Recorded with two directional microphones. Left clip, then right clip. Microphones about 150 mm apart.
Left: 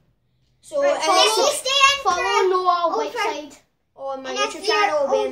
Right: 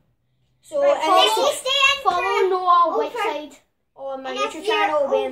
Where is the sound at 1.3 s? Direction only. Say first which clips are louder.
Left 1 dB; 15° right (ahead or behind).